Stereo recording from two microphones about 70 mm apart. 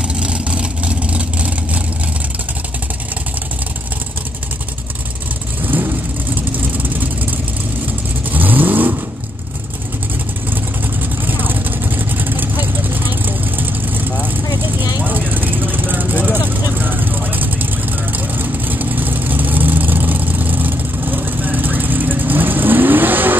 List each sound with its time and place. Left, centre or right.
0.1 s vehicle: centre
5.7 s vehicle: right
10.5 s vehicle: right